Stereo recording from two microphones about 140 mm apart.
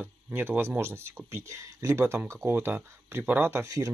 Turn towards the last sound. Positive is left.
turn(degrees=-20)  # may be behind; listen again after turning